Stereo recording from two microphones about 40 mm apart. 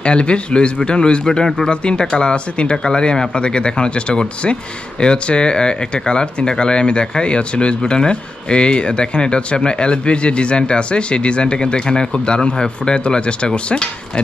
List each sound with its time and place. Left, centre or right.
0.0 s speech: left